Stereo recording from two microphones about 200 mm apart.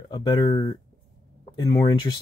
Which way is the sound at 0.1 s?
20° left (ahead or behind).